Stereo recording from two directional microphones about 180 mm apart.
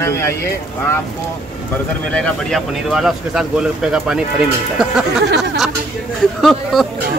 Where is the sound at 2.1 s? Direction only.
5° left (ahead or behind).